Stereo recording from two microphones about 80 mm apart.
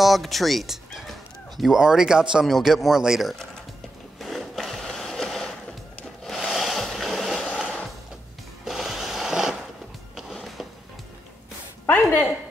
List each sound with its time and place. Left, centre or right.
0.0 s speech: centre
4.2 s sewing machine: centre
6.2 s a sound: centre
8.6 s sewing machine: centre
10.1 s music: centre
11.9 s a sound: left